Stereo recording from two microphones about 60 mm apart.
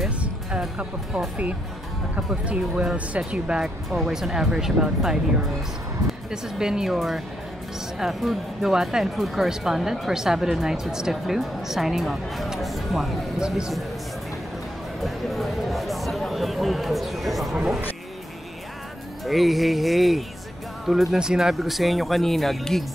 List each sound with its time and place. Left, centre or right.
2.1 s speech: right
3.9 s speech: centre
6.3 s speech: centre
15.0 s speech: centre
19.2 s speech: centre